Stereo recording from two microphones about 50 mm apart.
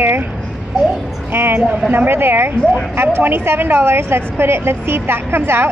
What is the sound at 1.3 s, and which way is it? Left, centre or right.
A woman's voice, right.